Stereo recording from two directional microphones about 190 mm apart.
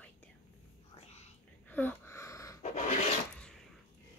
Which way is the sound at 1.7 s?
10° left (ahead or behind).